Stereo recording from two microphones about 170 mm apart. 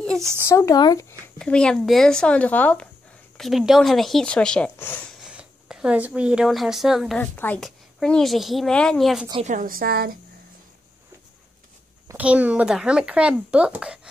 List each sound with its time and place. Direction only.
0.0 s a sound: 5° left (ahead or behind)
0.4 s speech: 15° left (ahead or behind)
1.4 s a woman's voice: 5° left (ahead or behind)
5.2 s a woman's voice: 5° right (ahead or behind)
9.5 s a woman's voice: 55° right (ahead or behind)
12.1 s a woman's voice: 10° right (ahead or behind)